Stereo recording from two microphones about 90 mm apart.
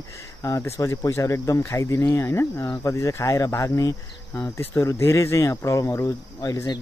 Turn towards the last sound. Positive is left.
turn(degrees=45)  # may be behind; listen again after turning